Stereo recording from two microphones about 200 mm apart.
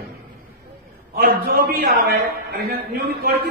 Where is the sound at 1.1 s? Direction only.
50° right (ahead or behind).